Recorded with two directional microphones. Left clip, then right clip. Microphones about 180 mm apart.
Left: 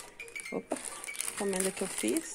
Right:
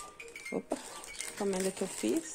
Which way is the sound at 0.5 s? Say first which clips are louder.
Right 1 dB; 10° right (ahead or behind).